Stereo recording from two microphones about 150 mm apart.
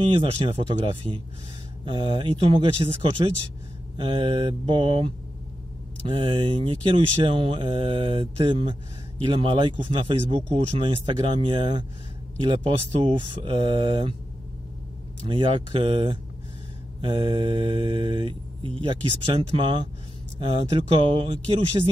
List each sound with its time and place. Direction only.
0.0 s mantra: 35° right (ahead or behind)
15.2 s mantra: 35° right (ahead or behind)